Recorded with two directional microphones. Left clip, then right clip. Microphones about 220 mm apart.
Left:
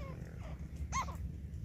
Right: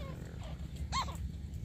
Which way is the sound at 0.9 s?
5° left (ahead or behind).